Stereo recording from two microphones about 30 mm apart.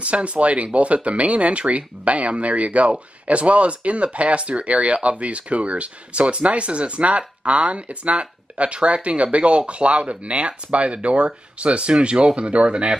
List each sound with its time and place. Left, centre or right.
0.0 s speech: right